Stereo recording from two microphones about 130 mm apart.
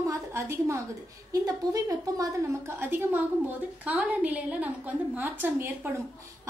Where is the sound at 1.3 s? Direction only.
25° right (ahead or behind).